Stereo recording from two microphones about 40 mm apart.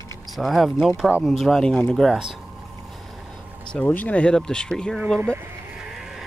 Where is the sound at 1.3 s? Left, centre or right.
Centre.